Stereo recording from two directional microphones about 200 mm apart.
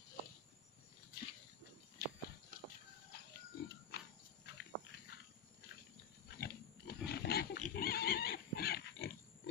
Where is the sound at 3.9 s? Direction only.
55° left (ahead or behind).